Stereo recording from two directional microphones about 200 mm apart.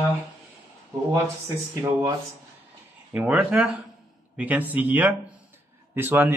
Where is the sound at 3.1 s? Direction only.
5° right (ahead or behind).